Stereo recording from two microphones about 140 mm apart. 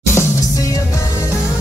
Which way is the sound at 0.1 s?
20° left (ahead or behind).